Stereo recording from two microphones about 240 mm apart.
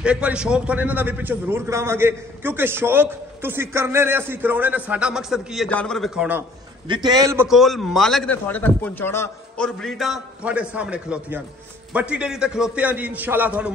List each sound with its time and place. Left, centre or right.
0.0 s a man's voice: centre
6.9 s a man's voice: centre
7.4 s a man's voice: centre